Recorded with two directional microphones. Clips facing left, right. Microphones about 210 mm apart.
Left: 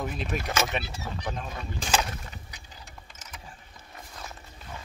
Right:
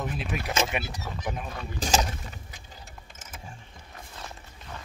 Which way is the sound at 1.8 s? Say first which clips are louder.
Right 2 dB; 40° right (ahead or behind).